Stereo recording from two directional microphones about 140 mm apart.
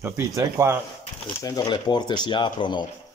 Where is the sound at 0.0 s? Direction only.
20° right (ahead or behind).